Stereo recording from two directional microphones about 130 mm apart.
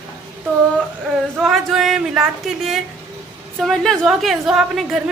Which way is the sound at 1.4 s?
Centre (ahead or behind).